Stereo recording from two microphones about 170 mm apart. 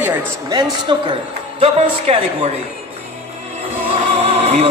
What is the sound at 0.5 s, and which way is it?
A man's voice, 30° right (ahead or behind).